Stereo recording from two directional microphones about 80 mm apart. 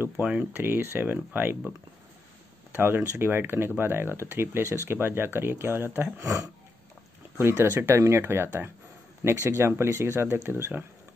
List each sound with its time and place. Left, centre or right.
0.2 s speech: centre
0.6 s speech: right
2.7 s speech: right
6.2 s speech: right
7.3 s speech: right